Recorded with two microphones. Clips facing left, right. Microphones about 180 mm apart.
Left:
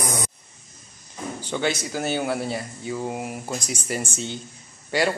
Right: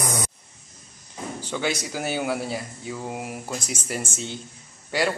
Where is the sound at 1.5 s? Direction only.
10° right (ahead or behind).